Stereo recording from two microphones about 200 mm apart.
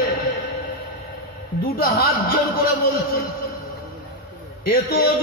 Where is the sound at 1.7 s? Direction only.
45° left (ahead or behind).